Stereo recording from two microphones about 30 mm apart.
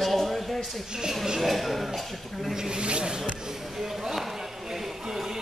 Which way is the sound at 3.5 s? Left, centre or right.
Centre.